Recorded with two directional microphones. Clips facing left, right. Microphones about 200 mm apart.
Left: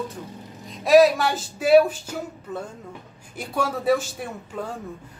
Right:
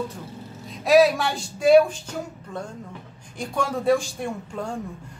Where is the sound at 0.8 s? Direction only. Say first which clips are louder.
Left 2 dB; centre (ahead or behind).